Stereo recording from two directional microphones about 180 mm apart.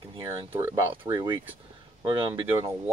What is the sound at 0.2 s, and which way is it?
Speech, 15° right (ahead or behind).